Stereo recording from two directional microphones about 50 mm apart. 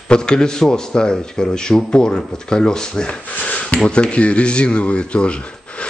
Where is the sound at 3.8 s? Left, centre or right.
Left.